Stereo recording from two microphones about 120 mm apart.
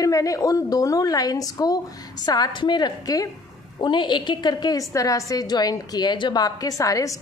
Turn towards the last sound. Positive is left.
turn(degrees=30)  # may be behind; listen again after turning